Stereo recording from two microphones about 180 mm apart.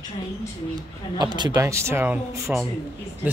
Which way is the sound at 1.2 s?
25° right (ahead or behind).